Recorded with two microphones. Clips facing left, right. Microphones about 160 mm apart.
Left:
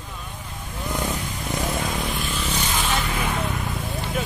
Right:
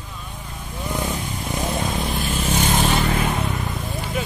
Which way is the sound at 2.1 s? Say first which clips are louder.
Right 5 dB; 45° right (ahead or behind).